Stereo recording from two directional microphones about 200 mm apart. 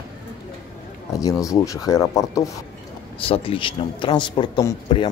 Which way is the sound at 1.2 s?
15° left (ahead or behind).